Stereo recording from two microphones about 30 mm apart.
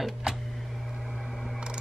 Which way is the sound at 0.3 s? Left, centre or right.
Right.